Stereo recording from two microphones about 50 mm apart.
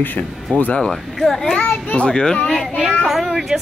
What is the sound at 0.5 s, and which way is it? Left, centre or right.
Speech, left.